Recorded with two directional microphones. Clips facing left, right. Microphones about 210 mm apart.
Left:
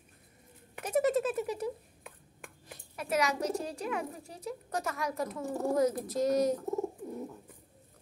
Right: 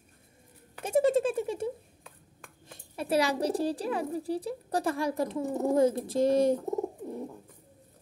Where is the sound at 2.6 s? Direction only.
25° right (ahead or behind).